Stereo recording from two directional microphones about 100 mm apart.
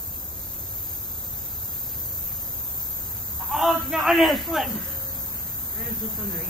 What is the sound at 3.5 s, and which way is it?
A man's voice, 5° right (ahead or behind).